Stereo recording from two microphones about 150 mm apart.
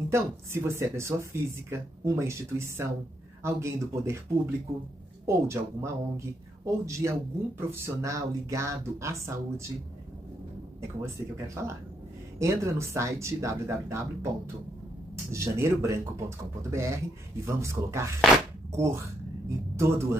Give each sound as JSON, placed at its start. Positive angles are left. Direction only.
{"t": 0.1, "sound": "speech", "side_deg": -15}
{"t": 5.2, "sound": "speech", "side_deg": -20}
{"t": 11.0, "sound": "speech", "side_deg": -20}